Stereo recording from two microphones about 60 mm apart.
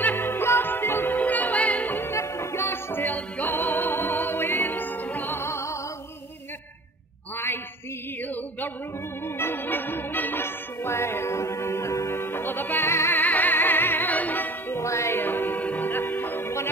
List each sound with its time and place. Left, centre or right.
0.0 s music: left
1.1 s music: left
2.1 s music: left
9.4 s music: left
13.2 s music: left
14.8 s music: left
15.1 s music: left